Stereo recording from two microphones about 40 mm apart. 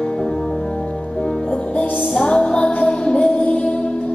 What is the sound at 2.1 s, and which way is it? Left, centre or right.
Music, centre.